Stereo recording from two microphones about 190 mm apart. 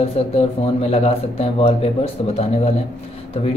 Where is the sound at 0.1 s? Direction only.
35° left (ahead or behind).